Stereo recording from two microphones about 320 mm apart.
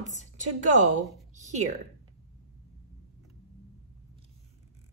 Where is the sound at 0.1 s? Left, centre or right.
Right.